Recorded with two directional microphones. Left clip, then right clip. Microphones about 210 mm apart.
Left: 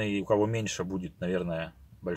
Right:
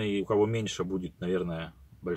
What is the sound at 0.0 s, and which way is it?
Speech, 5° left (ahead or behind).